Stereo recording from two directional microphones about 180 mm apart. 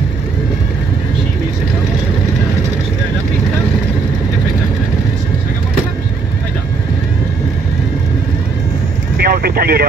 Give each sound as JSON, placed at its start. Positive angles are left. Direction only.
{"t": 9.2, "sound": "vehicle", "side_deg": -60}